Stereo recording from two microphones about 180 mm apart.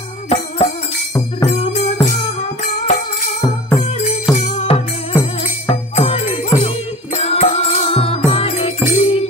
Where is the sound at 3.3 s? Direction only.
20° left (ahead or behind).